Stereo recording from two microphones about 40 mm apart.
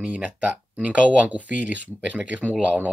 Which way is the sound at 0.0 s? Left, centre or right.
Right.